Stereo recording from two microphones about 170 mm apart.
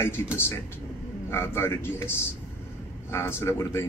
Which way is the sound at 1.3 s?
15° left (ahead or behind).